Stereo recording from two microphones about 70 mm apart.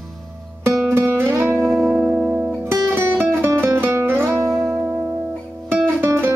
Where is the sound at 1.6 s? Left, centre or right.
Centre.